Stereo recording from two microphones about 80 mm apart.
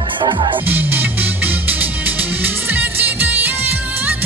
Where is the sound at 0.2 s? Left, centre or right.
Right.